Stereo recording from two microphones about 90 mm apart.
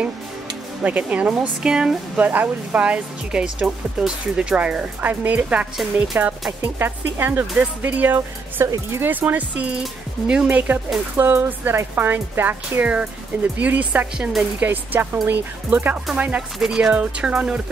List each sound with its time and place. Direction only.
0.8 s speech: 15° right (ahead or behind)
11.1 s speech: 25° right (ahead or behind)